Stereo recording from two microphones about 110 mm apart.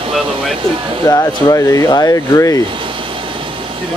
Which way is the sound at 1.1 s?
35° left (ahead or behind).